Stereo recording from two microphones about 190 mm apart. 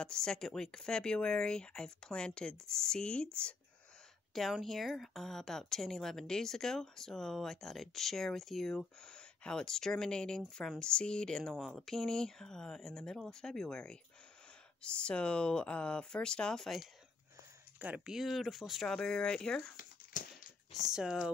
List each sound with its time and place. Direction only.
0.0 s a woman's voice: 5° left (ahead or behind)
4.3 s a woman's voice: centre (ahead or behind)
20.1 s a sound: 45° left (ahead or behind)
20.8 s a woman's voice: 5° right (ahead or behind)